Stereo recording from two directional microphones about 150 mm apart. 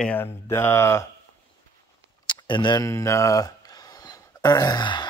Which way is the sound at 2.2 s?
30° left (ahead or behind).